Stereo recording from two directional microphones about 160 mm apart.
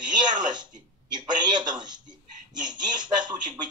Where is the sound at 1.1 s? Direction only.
25° right (ahead or behind).